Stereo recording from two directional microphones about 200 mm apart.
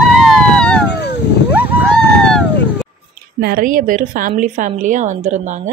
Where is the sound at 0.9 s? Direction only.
55° left (ahead or behind).